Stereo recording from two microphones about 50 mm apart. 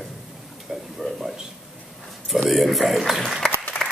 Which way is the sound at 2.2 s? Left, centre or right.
Centre.